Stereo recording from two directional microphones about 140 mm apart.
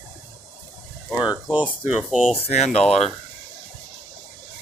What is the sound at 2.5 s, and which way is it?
Speech, 55° left (ahead or behind).